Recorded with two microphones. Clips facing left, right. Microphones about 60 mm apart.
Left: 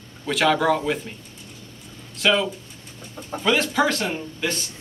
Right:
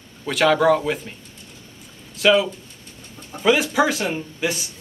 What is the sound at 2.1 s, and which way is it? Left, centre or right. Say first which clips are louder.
Speech: right 4 dB; centre.